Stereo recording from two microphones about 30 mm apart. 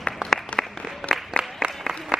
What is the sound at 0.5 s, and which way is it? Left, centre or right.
Applause, left.